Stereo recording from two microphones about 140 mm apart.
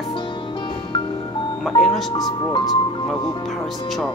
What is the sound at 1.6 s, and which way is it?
Speech, centre (ahead or behind).